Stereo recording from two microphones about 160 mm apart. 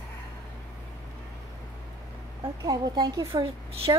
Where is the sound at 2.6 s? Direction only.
25° right (ahead or behind).